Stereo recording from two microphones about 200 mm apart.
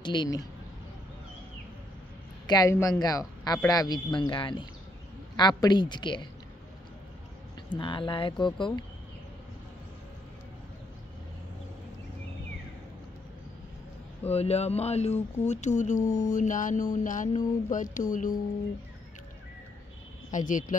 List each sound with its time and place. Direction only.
0.0 s speech: 20° left (ahead or behind)
2.4 s speech: 20° left (ahead or behind)
7.7 s speech: 25° left (ahead or behind)
14.2 s speech: 30° left (ahead or behind)
20.2 s speech: 40° left (ahead or behind)